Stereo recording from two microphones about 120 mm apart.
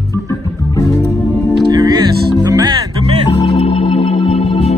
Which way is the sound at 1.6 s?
35° right (ahead or behind).